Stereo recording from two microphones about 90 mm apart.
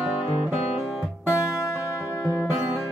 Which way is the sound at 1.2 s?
35° left (ahead or behind).